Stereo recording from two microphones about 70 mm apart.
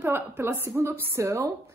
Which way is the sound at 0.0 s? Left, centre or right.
Right.